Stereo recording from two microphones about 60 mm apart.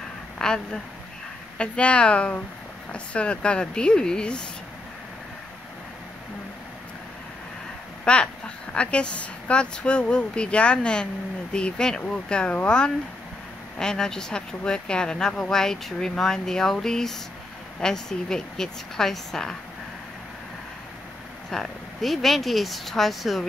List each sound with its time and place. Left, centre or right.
0.4 s a sound: centre
1.6 s speech: centre
8.0 s speech: centre
21.5 s speech: centre